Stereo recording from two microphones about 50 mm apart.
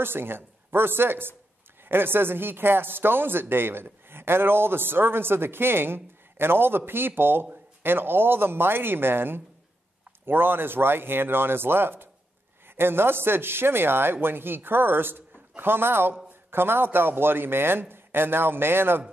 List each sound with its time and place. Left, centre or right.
0.0 s speech: right